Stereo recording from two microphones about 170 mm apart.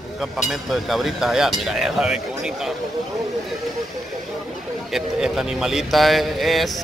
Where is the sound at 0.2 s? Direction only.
Centre (ahead or behind).